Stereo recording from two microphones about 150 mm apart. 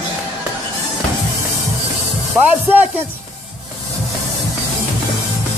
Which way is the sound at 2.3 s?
5° right (ahead or behind).